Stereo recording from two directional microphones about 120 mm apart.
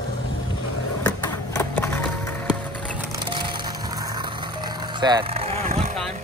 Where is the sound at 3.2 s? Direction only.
40° right (ahead or behind).